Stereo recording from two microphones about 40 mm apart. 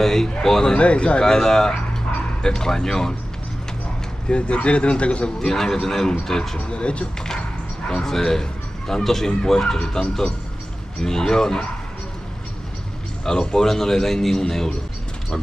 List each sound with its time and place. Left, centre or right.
0.0 s a man's voice: centre
0.7 s speech: left
1.2 s a man's voice: centre
4.3 s speech: left
5.4 s a man's voice: centre; by 7.1 s left
7.9 s a man's voice: centre
13.2 s a man's voice: centre